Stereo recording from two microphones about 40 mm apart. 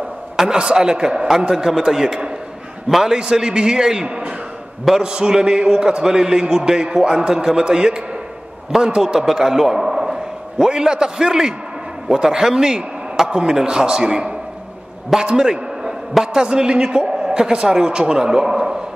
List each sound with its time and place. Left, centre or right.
0.5 s a man's voice: right